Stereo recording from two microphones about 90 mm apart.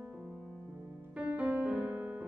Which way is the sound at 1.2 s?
15° right (ahead or behind).